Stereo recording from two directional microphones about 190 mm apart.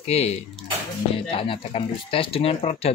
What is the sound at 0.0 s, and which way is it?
Speech, 35° left (ahead or behind).